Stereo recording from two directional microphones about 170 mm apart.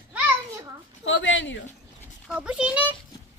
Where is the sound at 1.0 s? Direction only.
90° left.